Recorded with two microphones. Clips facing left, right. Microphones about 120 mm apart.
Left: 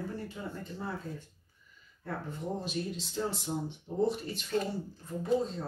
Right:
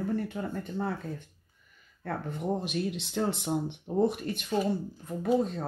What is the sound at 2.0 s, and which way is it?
Speech, 65° right (ahead or behind).